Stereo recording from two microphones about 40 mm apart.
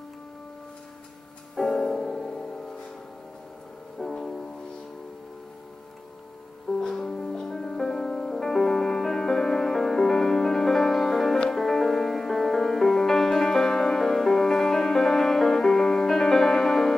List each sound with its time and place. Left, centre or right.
1.6 s music: left
1.9 s music: centre
4.0 s music: centre
6.9 s music: centre